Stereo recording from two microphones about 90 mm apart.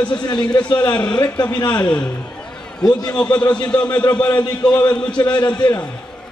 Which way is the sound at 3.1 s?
10° left (ahead or behind).